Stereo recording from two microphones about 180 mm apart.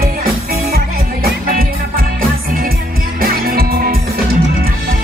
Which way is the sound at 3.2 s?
55° right (ahead or behind).